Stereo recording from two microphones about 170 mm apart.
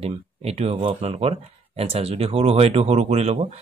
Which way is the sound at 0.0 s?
35° right (ahead or behind).